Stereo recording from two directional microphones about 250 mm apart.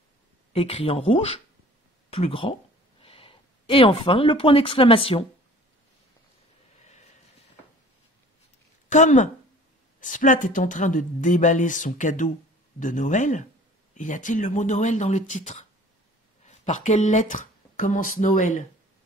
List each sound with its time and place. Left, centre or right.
0.5 s speech: left
8.8 s a woman's voice: left